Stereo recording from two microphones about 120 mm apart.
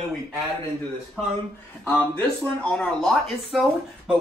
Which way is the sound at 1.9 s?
15° left (ahead or behind).